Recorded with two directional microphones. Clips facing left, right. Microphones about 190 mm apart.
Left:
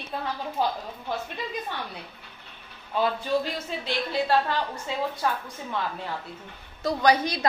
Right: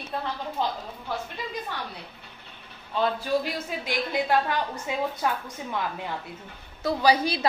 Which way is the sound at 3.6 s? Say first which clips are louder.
Even; 15° right (ahead or behind).